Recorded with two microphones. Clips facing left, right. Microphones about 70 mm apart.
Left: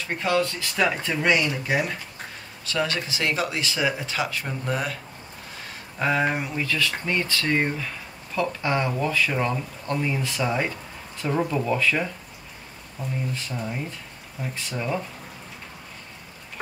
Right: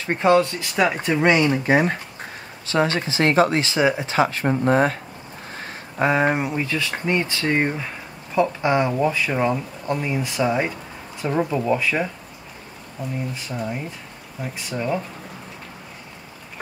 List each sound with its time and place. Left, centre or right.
0.0 s speech: right
2.6 s speech: right
5.9 s speech: right
13.3 s speech: centre